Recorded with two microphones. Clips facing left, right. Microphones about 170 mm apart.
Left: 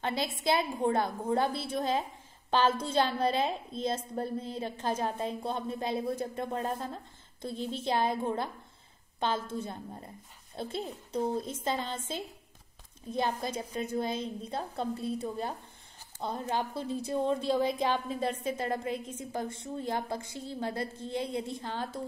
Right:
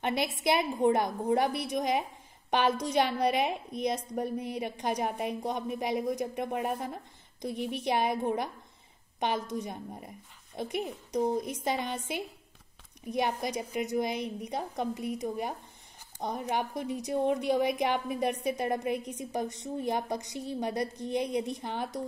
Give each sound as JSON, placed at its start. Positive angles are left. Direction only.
{"t": 0.0, "sound": "a woman's voice", "side_deg": -20}